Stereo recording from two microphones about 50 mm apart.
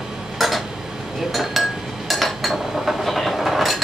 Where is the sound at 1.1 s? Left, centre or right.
Centre.